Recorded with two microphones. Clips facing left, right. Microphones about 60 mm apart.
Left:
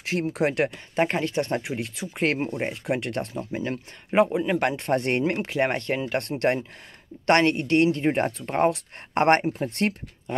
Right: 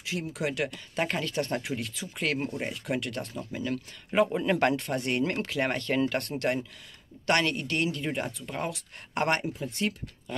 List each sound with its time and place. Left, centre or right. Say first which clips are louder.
0.0 s speech: left 7 dB; left
0.7 s speech: left 6 dB; left
4.3 s speech: left 1 dB; centre
4.7 s speech: left 6 dB; left
5.2 s speech: left 4 dB; left
9.5 s speech: left 6 dB; left